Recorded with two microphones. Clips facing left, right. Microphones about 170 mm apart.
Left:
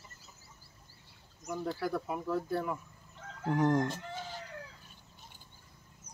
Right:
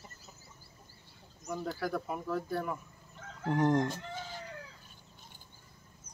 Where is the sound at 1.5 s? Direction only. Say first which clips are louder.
Left 1 dB; centre (ahead or behind).